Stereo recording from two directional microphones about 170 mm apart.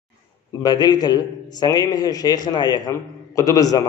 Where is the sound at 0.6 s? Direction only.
25° left (ahead or behind).